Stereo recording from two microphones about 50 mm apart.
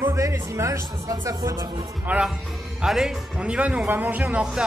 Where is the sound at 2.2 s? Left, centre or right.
Centre.